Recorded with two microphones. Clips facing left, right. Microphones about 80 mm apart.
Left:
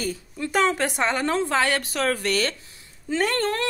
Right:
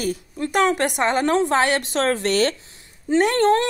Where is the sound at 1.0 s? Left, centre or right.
Centre.